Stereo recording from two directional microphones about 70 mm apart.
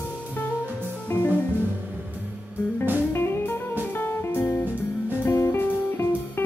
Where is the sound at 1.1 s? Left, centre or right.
Left.